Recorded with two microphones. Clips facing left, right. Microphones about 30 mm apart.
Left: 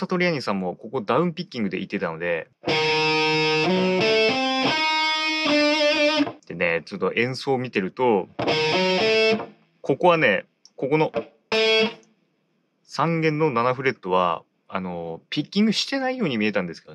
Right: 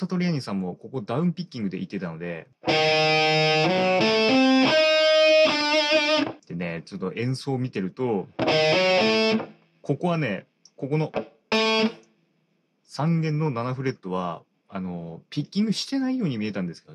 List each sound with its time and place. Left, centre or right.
0.0 s speech: left
2.6 s music: centre
6.5 s speech: left
8.4 s music: centre
9.8 s speech: left
11.1 s music: centre
12.9 s speech: left
15.2 s speech: left